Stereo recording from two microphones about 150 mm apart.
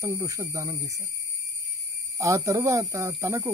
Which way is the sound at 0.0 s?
20° right (ahead or behind).